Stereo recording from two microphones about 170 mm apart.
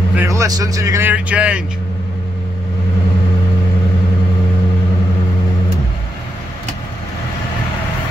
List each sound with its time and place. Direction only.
0.1 s speech: 15° right (ahead or behind)